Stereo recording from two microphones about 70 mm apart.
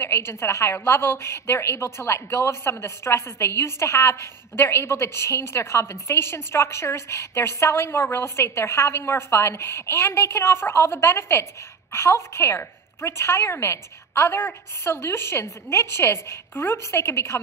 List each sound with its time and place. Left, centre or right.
0.0 s a woman's voice: left